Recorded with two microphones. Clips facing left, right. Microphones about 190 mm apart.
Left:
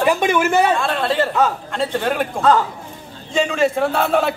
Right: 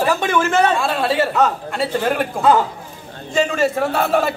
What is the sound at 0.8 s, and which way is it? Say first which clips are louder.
A man's voice: right 1 dB; 5° right (ahead or behind).